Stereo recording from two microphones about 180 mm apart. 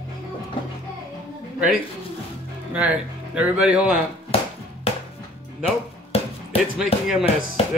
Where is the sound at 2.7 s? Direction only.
5° right (ahead or behind).